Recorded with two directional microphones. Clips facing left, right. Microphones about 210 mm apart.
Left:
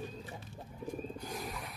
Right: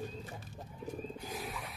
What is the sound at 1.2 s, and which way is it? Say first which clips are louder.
Wild animals: even; centre (ahead or behind).